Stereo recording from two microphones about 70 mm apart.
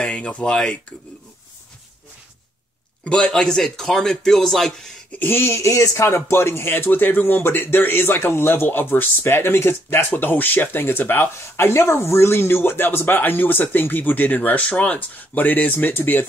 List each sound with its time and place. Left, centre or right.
0.0 s speech: centre
3.0 s speech: centre
5.1 s speech: left